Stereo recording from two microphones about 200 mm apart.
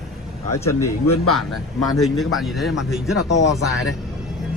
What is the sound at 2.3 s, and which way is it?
Speech, centre (ahead or behind).